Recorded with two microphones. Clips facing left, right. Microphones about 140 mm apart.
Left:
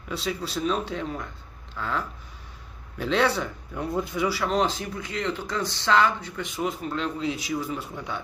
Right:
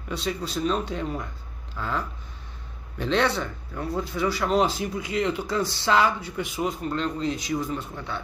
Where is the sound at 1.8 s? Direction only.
5° right (ahead or behind).